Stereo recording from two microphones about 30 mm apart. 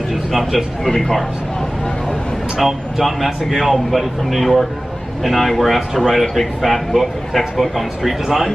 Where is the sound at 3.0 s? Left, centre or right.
Centre.